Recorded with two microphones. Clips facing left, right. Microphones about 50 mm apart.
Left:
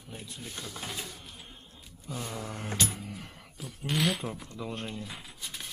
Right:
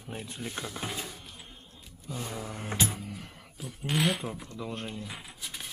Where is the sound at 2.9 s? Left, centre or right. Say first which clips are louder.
Right 1 dB; centre.